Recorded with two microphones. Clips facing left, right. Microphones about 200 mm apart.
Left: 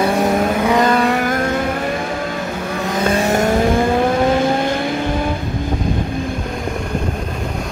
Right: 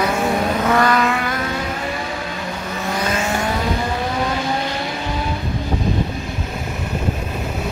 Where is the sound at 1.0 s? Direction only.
40° left (ahead or behind).